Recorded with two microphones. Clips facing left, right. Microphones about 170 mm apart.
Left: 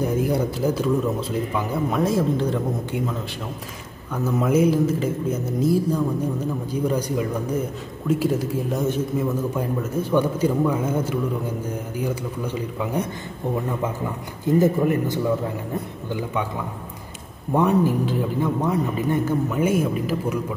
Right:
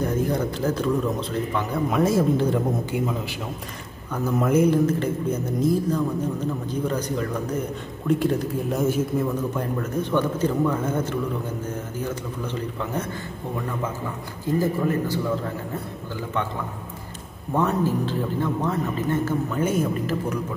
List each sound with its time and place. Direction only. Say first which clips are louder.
0.0 s speech: left 2 dB; 10° left (ahead or behind)
9.2 s speech: left 1 dB; 10° left (ahead or behind)
14.6 s speech: left 4 dB; 15° left (ahead or behind)
17.5 s speech: left 3 dB; 15° left (ahead or behind)